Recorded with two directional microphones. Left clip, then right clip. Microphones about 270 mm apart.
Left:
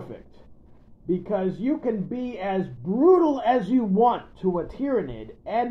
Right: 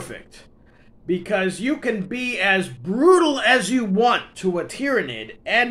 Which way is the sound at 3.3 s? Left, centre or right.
Centre.